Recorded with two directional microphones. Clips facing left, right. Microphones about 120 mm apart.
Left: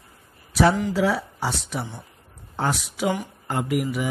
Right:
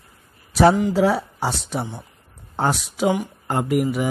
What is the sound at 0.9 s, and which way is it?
Speech, 40° right (ahead or behind).